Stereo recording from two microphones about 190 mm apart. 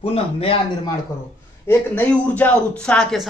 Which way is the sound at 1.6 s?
10° left (ahead or behind).